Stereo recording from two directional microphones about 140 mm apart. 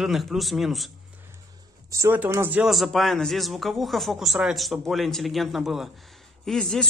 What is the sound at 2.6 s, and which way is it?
Speech, centre (ahead or behind).